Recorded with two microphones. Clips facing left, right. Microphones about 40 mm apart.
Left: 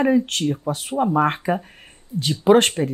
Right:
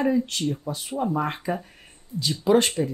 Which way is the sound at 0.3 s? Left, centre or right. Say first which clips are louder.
Left 5 dB; left.